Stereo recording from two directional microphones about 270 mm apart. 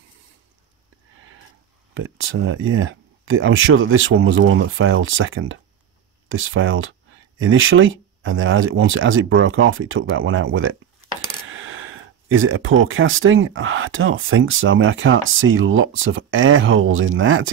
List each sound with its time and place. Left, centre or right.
2.0 s speech: right